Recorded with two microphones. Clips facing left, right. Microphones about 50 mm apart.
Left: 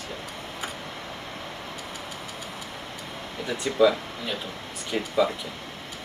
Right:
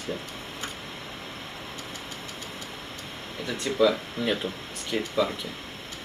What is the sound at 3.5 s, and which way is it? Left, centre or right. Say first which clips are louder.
Speech: left 2 dB; centre.